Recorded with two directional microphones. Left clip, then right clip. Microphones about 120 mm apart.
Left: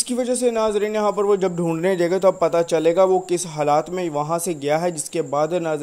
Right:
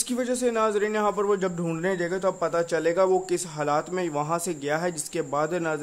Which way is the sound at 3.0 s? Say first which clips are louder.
Left 5 dB; 15° left (ahead or behind).